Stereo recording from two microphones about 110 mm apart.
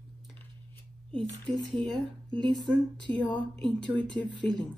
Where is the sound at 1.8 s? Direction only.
10° left (ahead or behind).